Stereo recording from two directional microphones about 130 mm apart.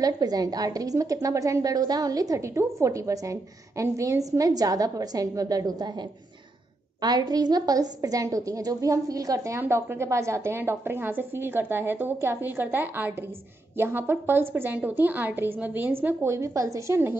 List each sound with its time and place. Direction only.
0.0 s a woman's voice: 30° right (ahead or behind)
7.0 s a woman's voice: 30° right (ahead or behind)